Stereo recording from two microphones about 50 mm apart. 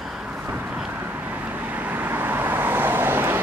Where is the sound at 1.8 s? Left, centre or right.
Right.